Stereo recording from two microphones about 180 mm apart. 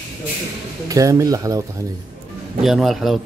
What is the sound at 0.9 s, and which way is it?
Speech, 20° right (ahead or behind).